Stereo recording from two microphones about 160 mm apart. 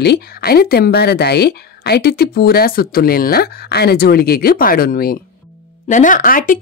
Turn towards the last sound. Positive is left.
turn(degrees=60)  # may be behind; listen again after turning